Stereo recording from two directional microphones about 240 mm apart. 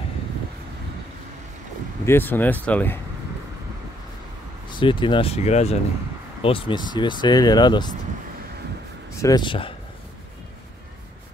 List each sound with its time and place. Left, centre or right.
2.0 s speech: centre
4.6 s speech: centre
9.2 s speech: centre